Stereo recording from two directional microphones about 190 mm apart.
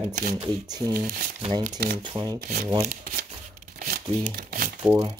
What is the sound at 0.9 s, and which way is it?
Speech, 50° right (ahead or behind).